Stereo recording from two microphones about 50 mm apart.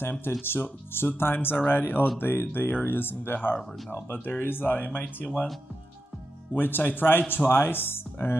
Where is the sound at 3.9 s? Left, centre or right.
Left.